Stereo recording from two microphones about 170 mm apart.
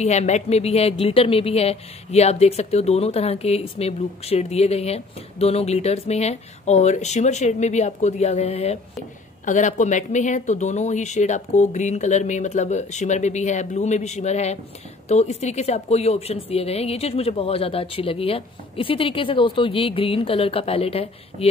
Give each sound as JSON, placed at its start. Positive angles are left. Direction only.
{"t": 0.0, "sound": "speech", "side_deg": 40}